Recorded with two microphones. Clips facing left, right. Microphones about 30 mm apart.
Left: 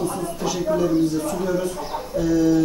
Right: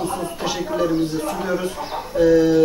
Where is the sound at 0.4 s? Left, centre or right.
Right.